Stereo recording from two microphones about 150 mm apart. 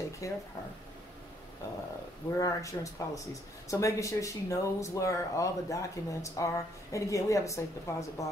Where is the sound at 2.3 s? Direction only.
20° left (ahead or behind).